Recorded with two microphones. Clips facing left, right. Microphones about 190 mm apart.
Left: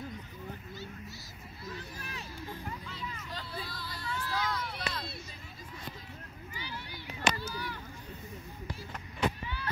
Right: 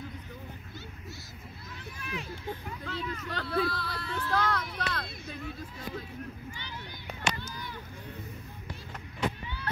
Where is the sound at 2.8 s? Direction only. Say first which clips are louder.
Right 7 dB; 65° right (ahead or behind).